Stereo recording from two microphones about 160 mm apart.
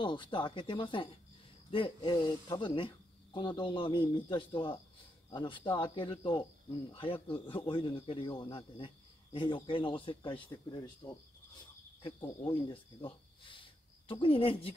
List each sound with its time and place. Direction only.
0.0 s speech: 30° left (ahead or behind)